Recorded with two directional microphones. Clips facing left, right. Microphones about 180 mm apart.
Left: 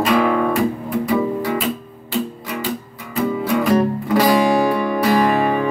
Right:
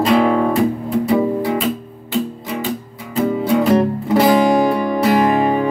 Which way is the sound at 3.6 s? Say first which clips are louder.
Right 2 dB; 25° right (ahead or behind).